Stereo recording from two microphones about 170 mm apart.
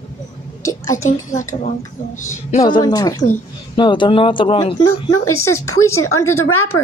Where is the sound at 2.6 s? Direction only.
25° left (ahead or behind).